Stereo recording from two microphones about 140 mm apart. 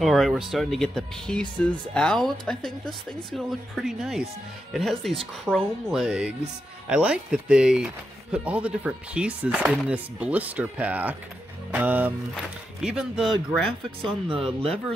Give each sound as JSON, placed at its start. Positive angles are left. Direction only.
{"t": 0.0, "sound": "speech", "side_deg": 0}
{"t": 14.0, "sound": "speech", "side_deg": -35}